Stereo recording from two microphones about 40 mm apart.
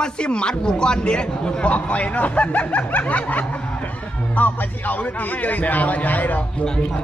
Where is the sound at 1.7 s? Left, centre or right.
Left.